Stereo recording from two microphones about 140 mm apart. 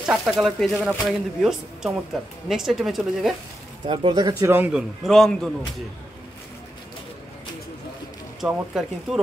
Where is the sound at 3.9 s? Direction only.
30° right (ahead or behind).